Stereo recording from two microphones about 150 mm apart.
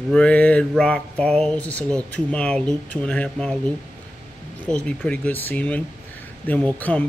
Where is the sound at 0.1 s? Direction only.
10° left (ahead or behind).